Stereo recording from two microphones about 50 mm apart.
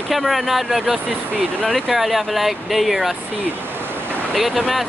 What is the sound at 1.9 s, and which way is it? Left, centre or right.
Speech, centre.